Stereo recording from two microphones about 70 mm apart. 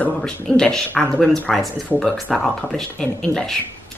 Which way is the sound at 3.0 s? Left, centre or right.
Centre.